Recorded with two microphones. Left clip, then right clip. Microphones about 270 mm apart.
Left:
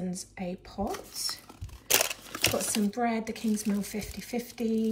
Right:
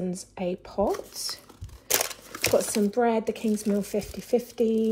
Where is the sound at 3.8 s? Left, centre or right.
Centre.